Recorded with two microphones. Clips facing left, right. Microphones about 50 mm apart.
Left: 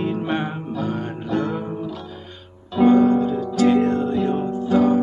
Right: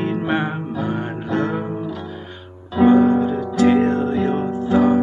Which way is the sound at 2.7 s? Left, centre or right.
Centre.